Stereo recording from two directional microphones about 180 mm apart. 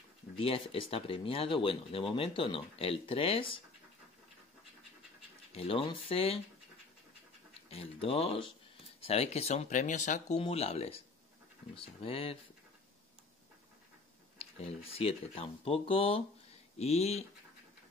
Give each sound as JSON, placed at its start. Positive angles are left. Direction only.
{"t": 0.4, "sound": "speech", "side_deg": 30}
{"t": 5.5, "sound": "speech", "side_deg": 30}
{"t": 7.7, "sound": "speech", "side_deg": 30}
{"t": 14.4, "sound": "speech", "side_deg": 30}